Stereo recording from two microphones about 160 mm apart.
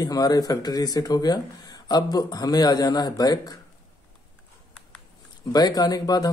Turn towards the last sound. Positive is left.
turn(degrees=25)  # may be behind; listen again after turning